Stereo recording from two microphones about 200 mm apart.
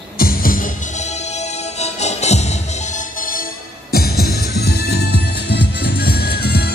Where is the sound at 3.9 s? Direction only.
50° left (ahead or behind).